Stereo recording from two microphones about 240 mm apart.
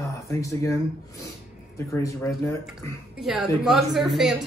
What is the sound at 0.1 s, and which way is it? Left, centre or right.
Speech, centre.